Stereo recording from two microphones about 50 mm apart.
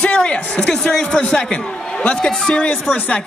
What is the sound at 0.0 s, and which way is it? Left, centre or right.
Speech, left.